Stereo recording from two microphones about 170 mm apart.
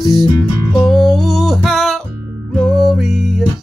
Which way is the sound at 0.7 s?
Centre (ahead or behind).